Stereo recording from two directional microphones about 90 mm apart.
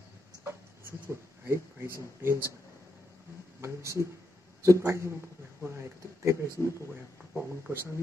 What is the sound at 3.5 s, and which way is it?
Speech, 30° right (ahead or behind).